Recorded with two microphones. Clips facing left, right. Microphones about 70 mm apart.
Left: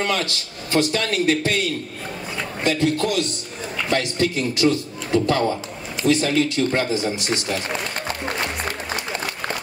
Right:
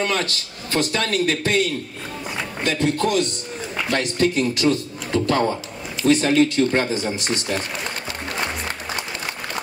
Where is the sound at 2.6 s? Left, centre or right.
Right.